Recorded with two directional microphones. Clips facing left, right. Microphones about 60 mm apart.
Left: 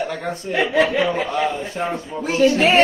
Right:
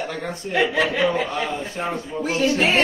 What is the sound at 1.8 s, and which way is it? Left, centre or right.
Speech, centre.